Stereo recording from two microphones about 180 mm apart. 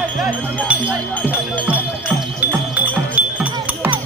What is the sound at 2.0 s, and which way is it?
Music, 10° right (ahead or behind).